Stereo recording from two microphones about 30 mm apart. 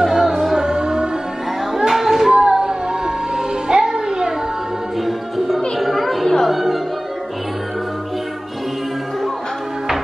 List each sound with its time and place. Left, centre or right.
0.0 s music: centre
1.7 s a sound: centre
2.5 s music: right
5.8 s children playing: centre
6.4 s music: centre